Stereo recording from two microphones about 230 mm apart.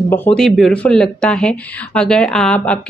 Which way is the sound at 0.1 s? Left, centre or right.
Centre.